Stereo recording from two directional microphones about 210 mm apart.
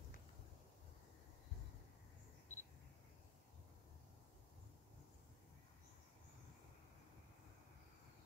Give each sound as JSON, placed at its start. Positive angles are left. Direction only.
{"t": 2.5, "sound": "camera", "side_deg": 35}